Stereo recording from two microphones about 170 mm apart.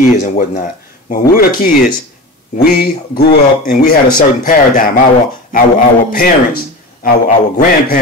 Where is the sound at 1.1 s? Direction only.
60° left (ahead or behind).